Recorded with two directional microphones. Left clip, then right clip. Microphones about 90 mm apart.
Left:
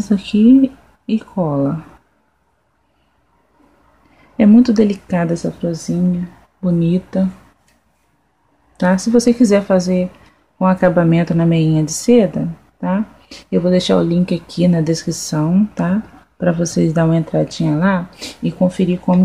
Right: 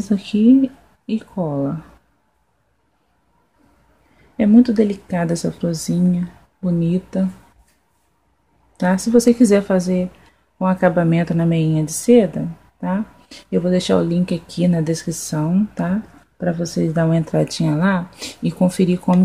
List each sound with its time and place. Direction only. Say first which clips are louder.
0.0 s speech: left 3 dB; 5° right (ahead or behind)
4.5 s speech: left 2 dB; 10° left (ahead or behind)
5.3 s speech: left 2 dB; 40° right (ahead or behind)
6.6 s speech: left 4 dB; centre (ahead or behind)
8.7 s speech: left 2 dB; 5° right (ahead or behind)
9.2 s a woman's voice: even; 25° right (ahead or behind)
10.2 s speech: left 5 dB; centre (ahead or behind)
17.1 s a woman's voice: left 2 dB; 25° right (ahead or behind)
18.6 s speech: left 1 dB; 45° right (ahead or behind)